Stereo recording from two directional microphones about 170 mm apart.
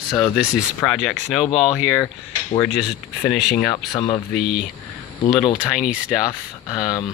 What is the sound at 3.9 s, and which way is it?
Speech, 20° left (ahead or behind).